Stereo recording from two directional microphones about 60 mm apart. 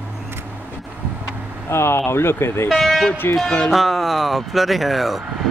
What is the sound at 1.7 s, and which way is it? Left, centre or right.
Speech, left.